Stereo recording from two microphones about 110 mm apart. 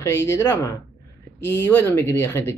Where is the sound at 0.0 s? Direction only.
25° left (ahead or behind).